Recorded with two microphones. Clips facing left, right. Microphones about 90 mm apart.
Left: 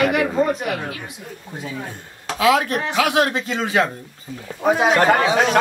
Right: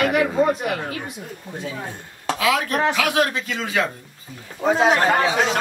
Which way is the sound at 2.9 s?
25° left (ahead or behind).